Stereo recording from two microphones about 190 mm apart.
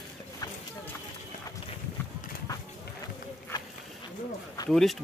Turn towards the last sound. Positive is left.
turn(degrees=0)  # may be behind; listen again after turning